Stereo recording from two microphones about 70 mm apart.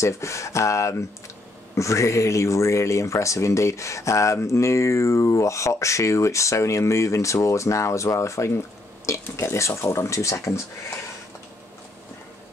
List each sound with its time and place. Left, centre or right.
0.0 s speech: left